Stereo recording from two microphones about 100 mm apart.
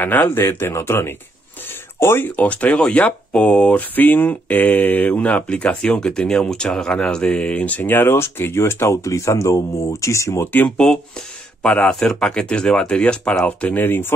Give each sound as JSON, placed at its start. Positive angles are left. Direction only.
{"t": 0.0, "sound": "speech", "side_deg": 20}
{"t": 10.8, "sound": "speech", "side_deg": 10}